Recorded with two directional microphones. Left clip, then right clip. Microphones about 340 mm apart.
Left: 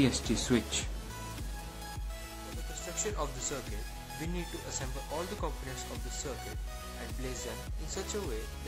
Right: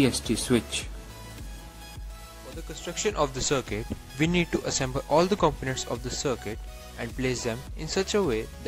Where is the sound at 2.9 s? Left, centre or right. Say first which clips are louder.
Right 11 dB; right.